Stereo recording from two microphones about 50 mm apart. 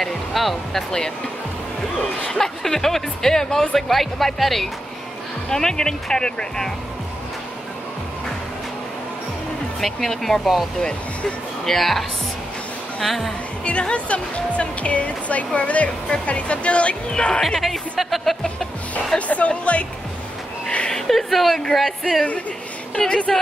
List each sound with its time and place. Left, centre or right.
0.0 s speech: centre
2.2 s speech: centre
9.8 s speech: centre
10.8 s speech: centre
13.7 s speech: left
17.6 s speech: centre
18.4 s music: centre
19.1 s speech: left
20.9 s a woman's voice: centre
22.9 s speech: centre